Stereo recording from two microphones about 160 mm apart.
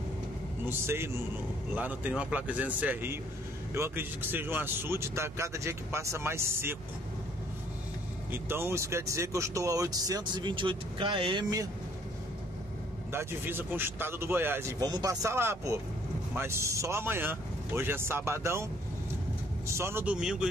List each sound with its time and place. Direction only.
0.7 s speech: 15° right (ahead or behind)
8.3 s speech: 15° right (ahead or behind); by 11.6 s 30° right (ahead or behind)
13.1 s speech: 15° right (ahead or behind)
19.7 s speech: 15° right (ahead or behind)